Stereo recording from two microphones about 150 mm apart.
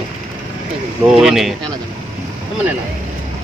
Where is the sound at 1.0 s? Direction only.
5° right (ahead or behind).